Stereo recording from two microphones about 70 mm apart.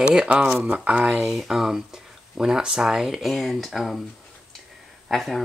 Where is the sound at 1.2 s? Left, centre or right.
Centre.